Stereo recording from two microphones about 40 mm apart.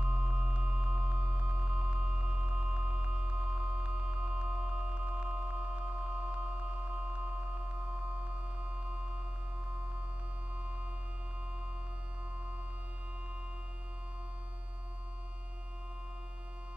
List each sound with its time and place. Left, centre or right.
0.0 s music: right